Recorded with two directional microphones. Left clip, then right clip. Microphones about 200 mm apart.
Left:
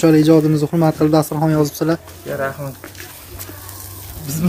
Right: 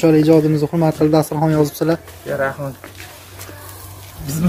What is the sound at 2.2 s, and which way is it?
Speech, 10° right (ahead or behind).